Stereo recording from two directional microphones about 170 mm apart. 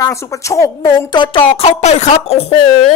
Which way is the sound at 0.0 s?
20° left (ahead or behind).